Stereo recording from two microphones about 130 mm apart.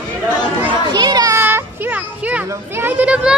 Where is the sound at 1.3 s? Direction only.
15° right (ahead or behind).